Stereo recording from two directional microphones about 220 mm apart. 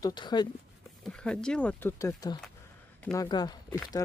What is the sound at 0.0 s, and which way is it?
Speech, 20° left (ahead or behind).